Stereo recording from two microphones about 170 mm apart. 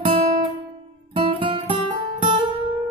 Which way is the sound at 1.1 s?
30° right (ahead or behind).